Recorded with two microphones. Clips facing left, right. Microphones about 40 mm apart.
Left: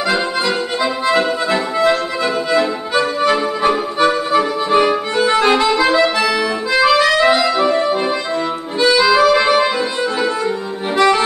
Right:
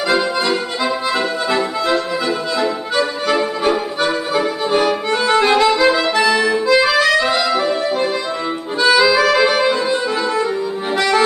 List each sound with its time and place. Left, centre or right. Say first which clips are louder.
0.8 s music: left 4 dB; centre
3.3 s music: left 1 dB; centre
5.2 s accordion: even; centre
6.1 s music: right 2 dB; centre
8.9 s music: left 1 dB; centre